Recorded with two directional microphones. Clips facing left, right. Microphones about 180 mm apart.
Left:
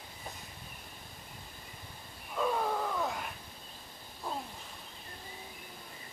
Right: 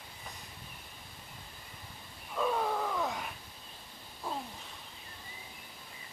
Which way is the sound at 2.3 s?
Centre (ahead or behind).